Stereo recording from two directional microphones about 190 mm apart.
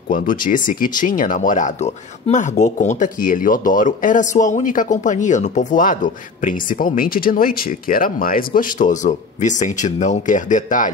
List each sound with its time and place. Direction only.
0.1 s speech: 45° left (ahead or behind)